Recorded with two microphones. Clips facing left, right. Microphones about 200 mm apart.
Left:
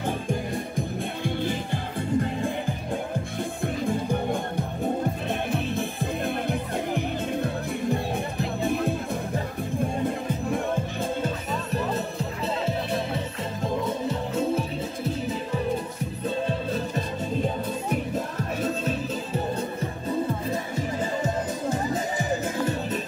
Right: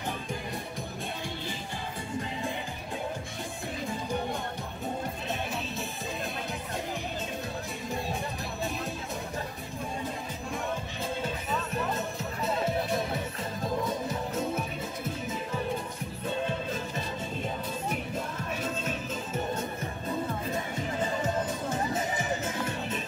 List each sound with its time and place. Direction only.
0.7 s music: 55° left (ahead or behind)
3.6 s music: 55° left (ahead or behind)
12.4 s music: 30° left (ahead or behind)
16.4 s music: 35° left (ahead or behind)
18.6 s music: 35° left (ahead or behind)